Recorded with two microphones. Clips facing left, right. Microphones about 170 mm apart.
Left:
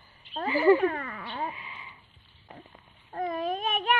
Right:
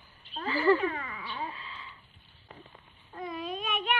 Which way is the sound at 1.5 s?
15° left (ahead or behind).